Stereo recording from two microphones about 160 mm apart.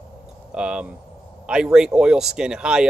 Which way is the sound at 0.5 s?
5° right (ahead or behind).